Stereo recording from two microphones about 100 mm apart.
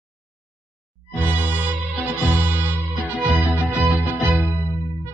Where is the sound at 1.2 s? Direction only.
15° right (ahead or behind).